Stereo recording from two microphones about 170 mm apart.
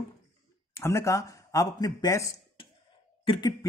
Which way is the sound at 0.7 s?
15° left (ahead or behind).